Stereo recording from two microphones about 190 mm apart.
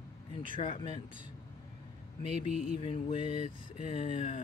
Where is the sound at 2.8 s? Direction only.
30° left (ahead or behind).